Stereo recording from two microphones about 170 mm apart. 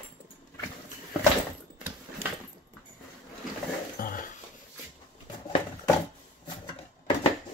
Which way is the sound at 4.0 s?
60° left (ahead or behind).